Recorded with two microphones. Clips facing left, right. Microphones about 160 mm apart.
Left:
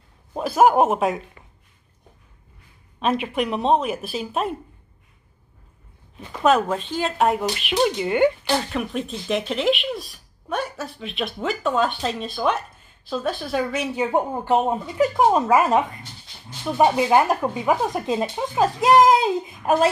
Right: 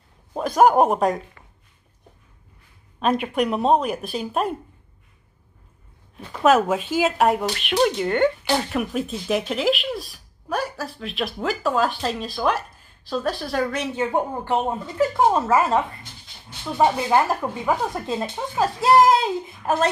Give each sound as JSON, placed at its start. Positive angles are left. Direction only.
{"t": 0.4, "sound": "speech", "side_deg": 5}
{"t": 3.0, "sound": "speech", "side_deg": 0}
{"t": 6.1, "sound": "speech", "side_deg": 0}
{"t": 13.9, "sound": "speech", "side_deg": 15}